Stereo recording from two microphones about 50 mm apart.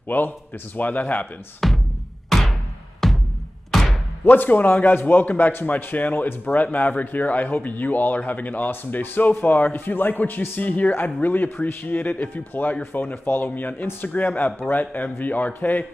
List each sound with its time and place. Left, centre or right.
0.1 s speech: left
1.6 s music: centre
3.7 s slam: centre
4.2 s speech: left